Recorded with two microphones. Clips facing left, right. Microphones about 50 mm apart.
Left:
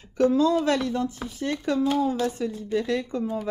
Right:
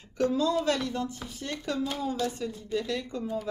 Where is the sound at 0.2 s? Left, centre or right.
Centre.